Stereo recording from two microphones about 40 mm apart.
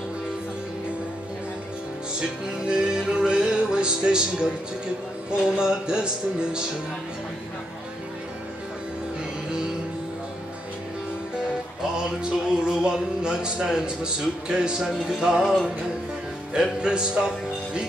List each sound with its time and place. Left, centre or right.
2.1 s music: right
5.6 s speech: right
11.8 s speech: centre
15.4 s music: centre
16.5 s speech: centre